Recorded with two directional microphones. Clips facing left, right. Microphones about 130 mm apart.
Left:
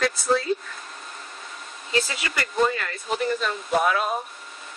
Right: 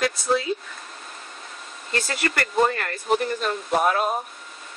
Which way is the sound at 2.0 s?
55° right (ahead or behind).